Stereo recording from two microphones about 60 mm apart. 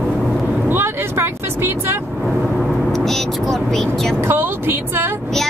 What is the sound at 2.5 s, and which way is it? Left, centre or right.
Vehicle, centre.